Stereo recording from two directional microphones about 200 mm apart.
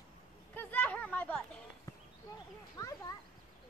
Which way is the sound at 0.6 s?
10° left (ahead or behind).